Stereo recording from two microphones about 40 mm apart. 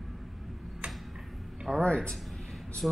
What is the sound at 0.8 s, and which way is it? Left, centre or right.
Tick-tock, right.